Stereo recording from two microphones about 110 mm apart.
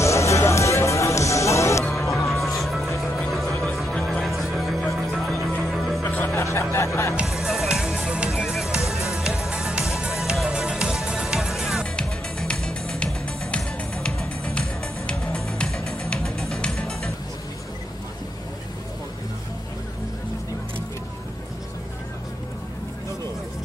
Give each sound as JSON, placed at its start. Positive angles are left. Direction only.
{"t": 0.0, "sound": "music", "side_deg": 25}
{"t": 1.9, "sound": "music", "side_deg": 0}
{"t": 6.0, "sound": "music", "side_deg": 15}
{"t": 7.2, "sound": "music", "side_deg": -5}
{"t": 11.8, "sound": "music", "side_deg": 10}